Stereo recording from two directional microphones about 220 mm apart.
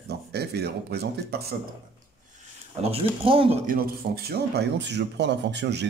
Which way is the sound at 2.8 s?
25° right (ahead or behind).